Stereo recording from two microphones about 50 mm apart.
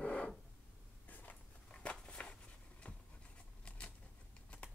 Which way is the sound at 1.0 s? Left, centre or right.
Left.